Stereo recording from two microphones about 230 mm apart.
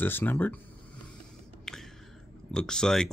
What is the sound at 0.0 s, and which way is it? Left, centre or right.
Speech, centre.